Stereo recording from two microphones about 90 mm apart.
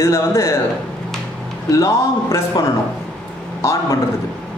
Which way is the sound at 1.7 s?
35° left (ahead or behind).